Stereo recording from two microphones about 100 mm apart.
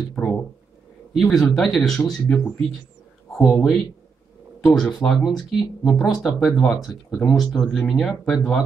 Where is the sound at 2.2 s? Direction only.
15° left (ahead or behind).